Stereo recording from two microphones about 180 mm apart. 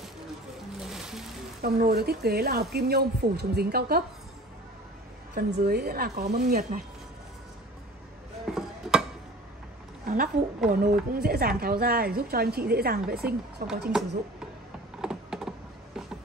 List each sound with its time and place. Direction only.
0.7 s music: 5° right (ahead or behind)
1.6 s speech: 60° right (ahead or behind)
5.3 s speech: 65° right (ahead or behind)
8.5 s a sound: 5° right (ahead or behind)
10.0 s a sound: 55° right (ahead or behind)
10.7 s speech: 50° right (ahead or behind)
13.9 s speech: centre (ahead or behind)
15.0 s computer keyboard: 5° right (ahead or behind)